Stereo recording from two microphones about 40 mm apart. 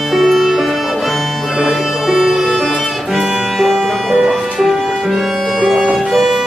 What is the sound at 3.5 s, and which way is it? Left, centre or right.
Music, centre.